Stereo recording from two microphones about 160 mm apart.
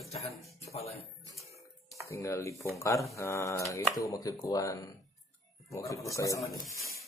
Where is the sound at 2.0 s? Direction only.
20° left (ahead or behind).